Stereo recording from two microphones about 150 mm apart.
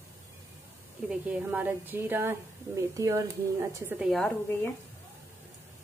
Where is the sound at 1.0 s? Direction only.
10° right (ahead or behind).